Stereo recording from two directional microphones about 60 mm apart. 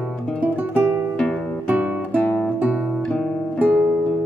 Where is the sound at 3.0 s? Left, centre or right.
Centre.